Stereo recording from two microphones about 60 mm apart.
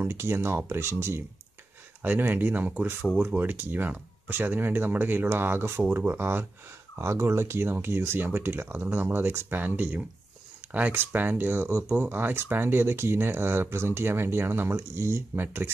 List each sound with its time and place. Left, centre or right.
0.0 s speech: right
2.0 s speech: right
7.0 s speech: right